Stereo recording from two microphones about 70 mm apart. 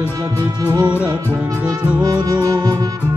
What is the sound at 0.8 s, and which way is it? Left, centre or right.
Music, centre.